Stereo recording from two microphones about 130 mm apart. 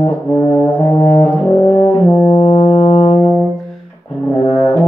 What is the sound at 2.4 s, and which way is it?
Brass instrument, 30° left (ahead or behind).